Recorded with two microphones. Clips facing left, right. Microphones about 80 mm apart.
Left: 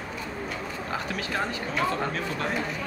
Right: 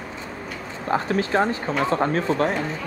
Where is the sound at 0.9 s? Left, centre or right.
Right.